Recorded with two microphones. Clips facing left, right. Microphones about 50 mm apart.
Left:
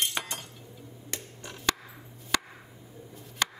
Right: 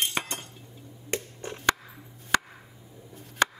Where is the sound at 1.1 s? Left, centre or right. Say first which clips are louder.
Right 8 dB; right.